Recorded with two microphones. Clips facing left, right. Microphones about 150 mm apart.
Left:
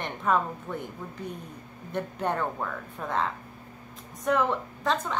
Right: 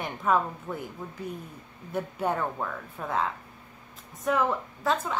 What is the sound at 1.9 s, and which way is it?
A woman's voice, 5° right (ahead or behind).